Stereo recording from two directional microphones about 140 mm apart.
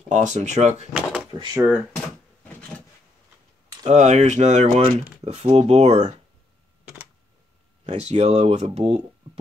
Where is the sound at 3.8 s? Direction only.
55° right (ahead or behind).